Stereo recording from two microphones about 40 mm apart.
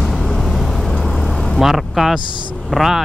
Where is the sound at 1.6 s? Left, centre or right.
Centre.